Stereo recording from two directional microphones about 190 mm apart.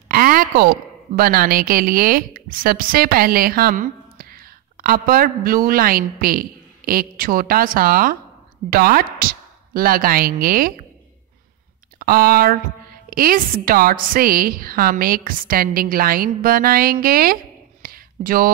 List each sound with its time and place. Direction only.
0.1 s a woman's voice: 50° right (ahead or behind)
12.0 s a woman's voice: 50° right (ahead or behind)
17.8 s a sound: 50° right (ahead or behind)